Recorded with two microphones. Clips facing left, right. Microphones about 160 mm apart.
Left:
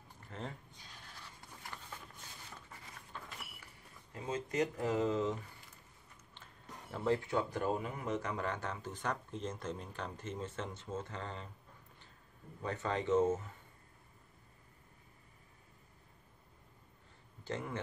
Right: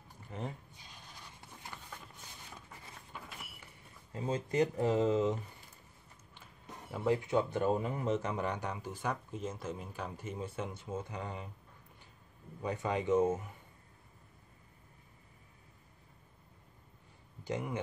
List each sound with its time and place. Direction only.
0.3 s a sound: 15° right (ahead or behind)
3.1 s vehicle: 10° right (ahead or behind)
4.1 s speech: 30° right (ahead or behind)
6.3 s a sound: 10° right (ahead or behind)
7.2 s speech: 20° right (ahead or behind)
12.6 s speech: 10° right (ahead or behind)
17.5 s speech: 15° right (ahead or behind)